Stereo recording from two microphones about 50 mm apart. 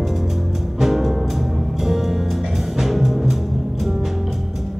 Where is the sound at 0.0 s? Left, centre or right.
Centre.